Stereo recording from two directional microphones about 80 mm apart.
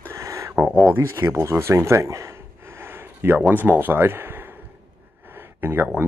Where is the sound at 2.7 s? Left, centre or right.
Right.